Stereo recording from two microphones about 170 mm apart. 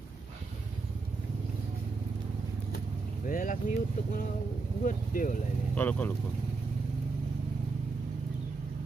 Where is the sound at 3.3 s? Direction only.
55° left (ahead or behind).